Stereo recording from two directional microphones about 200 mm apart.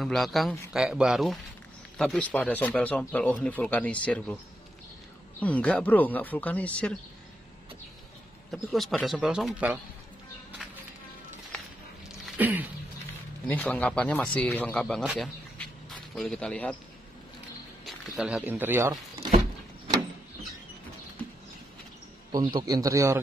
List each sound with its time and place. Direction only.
0.0 s a man's voice: centre (ahead or behind)
5.4 s speech: 5° left (ahead or behind)
8.5 s a man's voice: centre (ahead or behind)
12.3 s a sound: 10° right (ahead or behind)
13.5 s speech: 10° left (ahead or behind)
17.8 s speech: 5° right (ahead or behind)
22.3 s a man's voice: 20° right (ahead or behind)